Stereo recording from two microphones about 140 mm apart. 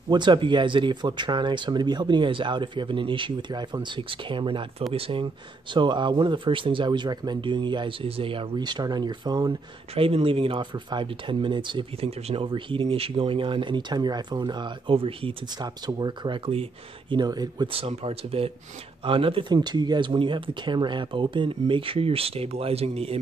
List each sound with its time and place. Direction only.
0.1 s speech: 35° right (ahead or behind)
9.9 s speech: 40° right (ahead or behind)
17.7 s speech: 45° right (ahead or behind)